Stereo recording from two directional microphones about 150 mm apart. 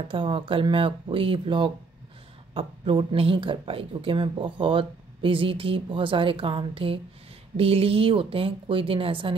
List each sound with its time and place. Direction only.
0.1 s a woman's voice: 35° right (ahead or behind)